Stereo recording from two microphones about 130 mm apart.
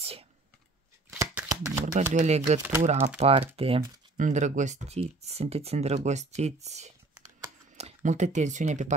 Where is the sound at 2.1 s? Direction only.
60° right (ahead or behind).